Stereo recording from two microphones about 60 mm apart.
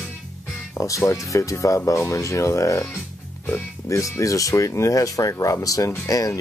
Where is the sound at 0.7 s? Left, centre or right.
Left.